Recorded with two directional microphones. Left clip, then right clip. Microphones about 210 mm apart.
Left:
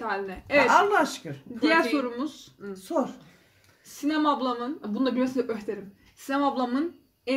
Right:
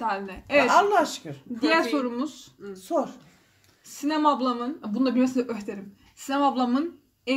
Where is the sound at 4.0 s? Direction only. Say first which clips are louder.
Right 2 dB; 35° right (ahead or behind).